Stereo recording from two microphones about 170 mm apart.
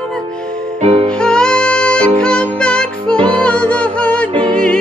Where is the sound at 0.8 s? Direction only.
35° right (ahead or behind).